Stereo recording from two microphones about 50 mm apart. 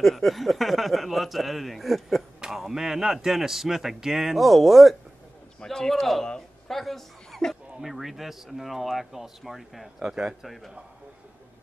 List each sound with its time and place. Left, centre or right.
0.0 s speech: centre
5.6 s a man's voice: centre
9.9 s speech: centre